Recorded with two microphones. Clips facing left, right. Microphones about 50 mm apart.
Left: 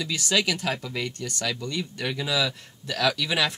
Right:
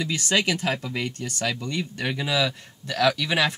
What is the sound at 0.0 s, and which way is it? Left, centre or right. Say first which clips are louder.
Speech: right 2 dB; right.